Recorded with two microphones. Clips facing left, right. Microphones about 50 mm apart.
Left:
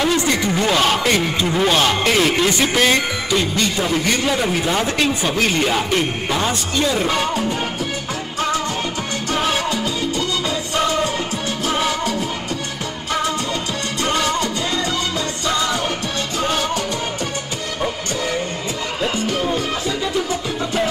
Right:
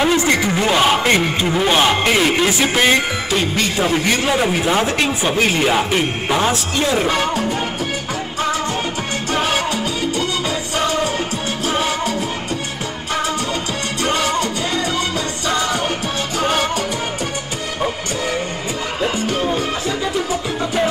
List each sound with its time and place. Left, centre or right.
0.0 s speech: centre
1.0 s a man's voice: right
1.4 s speech: centre
1.7 s a man's voice: centre
9.3 s music: centre
11.6 s music: centre
14.0 s music: centre
16.5 s music: right